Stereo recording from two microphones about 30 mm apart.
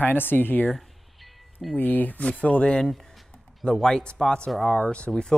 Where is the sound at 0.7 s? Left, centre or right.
Centre.